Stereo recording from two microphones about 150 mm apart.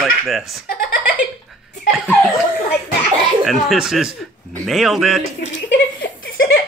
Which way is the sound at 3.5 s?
Centre (ahead or behind).